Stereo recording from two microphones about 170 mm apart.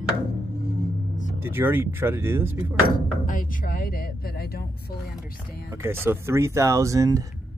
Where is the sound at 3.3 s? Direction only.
55° left (ahead or behind).